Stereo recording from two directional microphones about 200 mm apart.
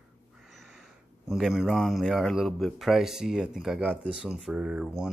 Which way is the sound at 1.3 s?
Centre (ahead or behind).